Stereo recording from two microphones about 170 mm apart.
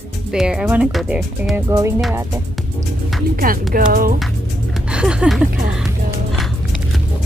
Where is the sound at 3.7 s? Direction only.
55° right (ahead or behind).